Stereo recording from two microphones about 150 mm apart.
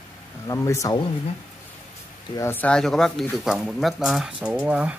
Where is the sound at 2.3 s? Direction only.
15° left (ahead or behind).